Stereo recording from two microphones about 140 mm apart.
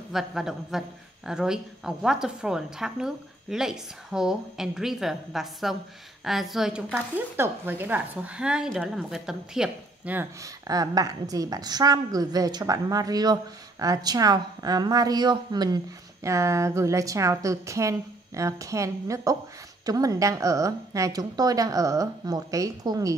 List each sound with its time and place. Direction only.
0.1 s a man's voice: 5° right (ahead or behind)
10.4 s a woman's voice: 25° right (ahead or behind)